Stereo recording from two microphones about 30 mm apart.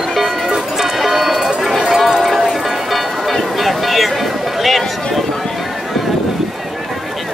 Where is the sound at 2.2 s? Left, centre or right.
Centre.